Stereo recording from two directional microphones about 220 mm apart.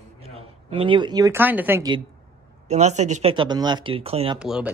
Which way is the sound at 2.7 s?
30° right (ahead or behind).